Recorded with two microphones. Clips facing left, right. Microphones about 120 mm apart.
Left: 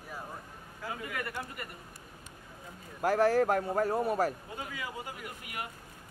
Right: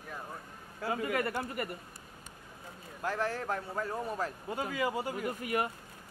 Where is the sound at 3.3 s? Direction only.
75° left (ahead or behind).